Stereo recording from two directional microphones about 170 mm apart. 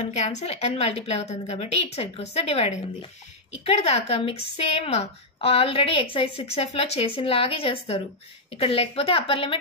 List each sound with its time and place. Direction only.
0.0 s a woman's voice: 40° left (ahead or behind)